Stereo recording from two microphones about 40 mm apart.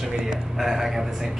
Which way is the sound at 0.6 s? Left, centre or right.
Centre.